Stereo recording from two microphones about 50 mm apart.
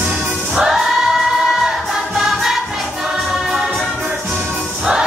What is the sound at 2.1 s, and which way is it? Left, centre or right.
Music, centre.